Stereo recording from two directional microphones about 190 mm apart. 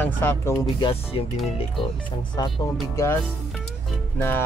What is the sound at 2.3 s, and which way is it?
Speech, 20° left (ahead or behind).